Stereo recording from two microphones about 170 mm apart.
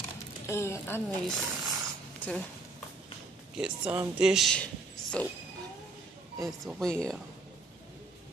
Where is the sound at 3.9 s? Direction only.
10° right (ahead or behind); by 5.3 s 10° left (ahead or behind).